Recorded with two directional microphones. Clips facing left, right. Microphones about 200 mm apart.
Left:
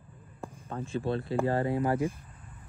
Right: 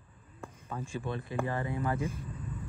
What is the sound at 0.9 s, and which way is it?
Speech, 15° right (ahead or behind).